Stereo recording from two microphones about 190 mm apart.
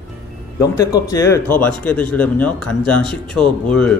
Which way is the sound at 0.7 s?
15° left (ahead or behind).